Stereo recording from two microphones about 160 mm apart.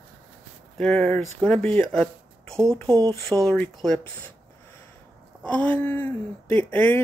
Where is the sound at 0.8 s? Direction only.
5° left (ahead or behind).